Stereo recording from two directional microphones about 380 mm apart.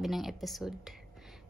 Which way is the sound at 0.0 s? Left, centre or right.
Centre.